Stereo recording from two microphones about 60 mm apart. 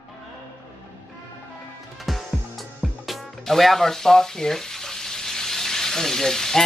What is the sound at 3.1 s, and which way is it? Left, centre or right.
Speech, centre.